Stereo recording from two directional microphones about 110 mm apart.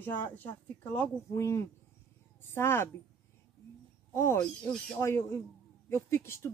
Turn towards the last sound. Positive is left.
turn(degrees=25)  # may be behind; listen again after turning